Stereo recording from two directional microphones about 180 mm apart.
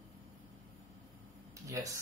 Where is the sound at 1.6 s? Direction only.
20° right (ahead or behind).